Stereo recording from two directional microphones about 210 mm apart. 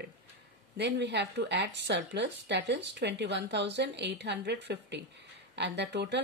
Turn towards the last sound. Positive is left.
turn(degrees=-55)  # may be behind; listen again after turning